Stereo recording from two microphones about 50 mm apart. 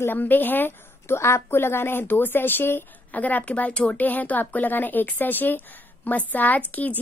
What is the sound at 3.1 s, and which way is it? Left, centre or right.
Speech, left.